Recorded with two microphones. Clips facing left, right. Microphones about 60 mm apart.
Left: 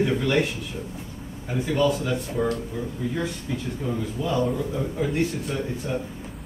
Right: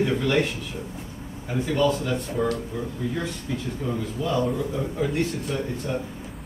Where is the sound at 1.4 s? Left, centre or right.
Centre.